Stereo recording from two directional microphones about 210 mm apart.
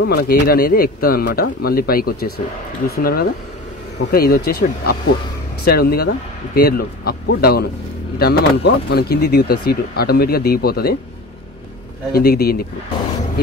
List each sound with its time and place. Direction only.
0.0 s speech: 50° left (ahead or behind)
12.1 s speech: 50° left (ahead or behind)